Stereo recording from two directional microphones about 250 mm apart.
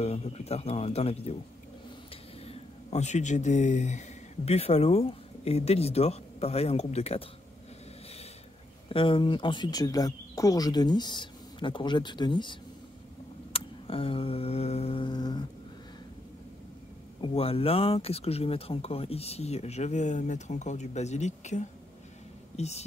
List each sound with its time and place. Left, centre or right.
0.0 s speech: left
2.4 s speech: left
8.8 s speech: left
13.5 s a sound: left
17.2 s speech: left